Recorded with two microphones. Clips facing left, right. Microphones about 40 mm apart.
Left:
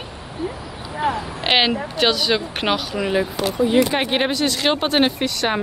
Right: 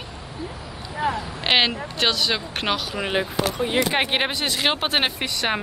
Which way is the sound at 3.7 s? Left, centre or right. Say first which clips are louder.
Left 2 dB; centre.